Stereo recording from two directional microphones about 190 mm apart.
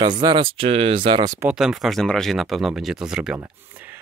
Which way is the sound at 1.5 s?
5° right (ahead or behind).